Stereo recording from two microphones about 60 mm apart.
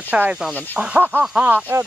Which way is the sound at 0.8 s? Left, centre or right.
Centre.